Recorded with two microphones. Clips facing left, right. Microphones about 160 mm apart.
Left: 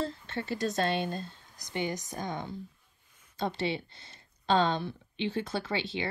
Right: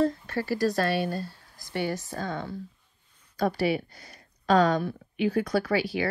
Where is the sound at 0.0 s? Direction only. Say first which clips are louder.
Right 8 dB; 25° left (ahead or behind).